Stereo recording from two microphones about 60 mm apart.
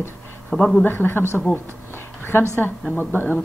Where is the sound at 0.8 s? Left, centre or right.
Left.